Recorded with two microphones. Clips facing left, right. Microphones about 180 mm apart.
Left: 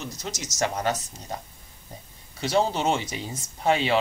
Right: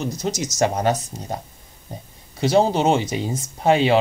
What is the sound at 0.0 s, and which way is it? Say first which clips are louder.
Speech: right 10 dB; 35° right (ahead or behind).